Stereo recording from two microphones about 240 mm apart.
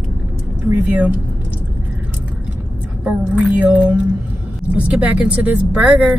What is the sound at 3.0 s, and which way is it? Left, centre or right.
Speech, centre.